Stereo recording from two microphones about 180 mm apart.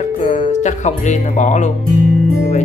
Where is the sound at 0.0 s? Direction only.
40° left (ahead or behind).